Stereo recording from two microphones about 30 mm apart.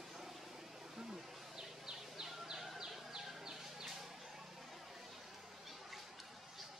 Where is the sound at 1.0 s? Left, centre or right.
Right.